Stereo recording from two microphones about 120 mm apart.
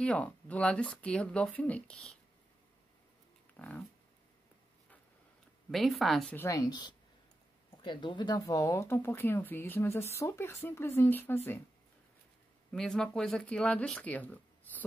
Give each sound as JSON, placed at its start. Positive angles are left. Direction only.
{"t": 0.0, "sound": "speech", "side_deg": 10}
{"t": 3.5, "sound": "a sound", "side_deg": 10}
{"t": 5.7, "sound": "speech", "side_deg": 0}
{"t": 6.3, "sound": "speech", "side_deg": 25}
{"t": 12.7, "sound": "speech", "side_deg": 5}